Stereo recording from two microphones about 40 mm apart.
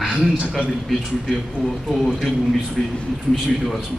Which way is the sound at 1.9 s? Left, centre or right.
Centre.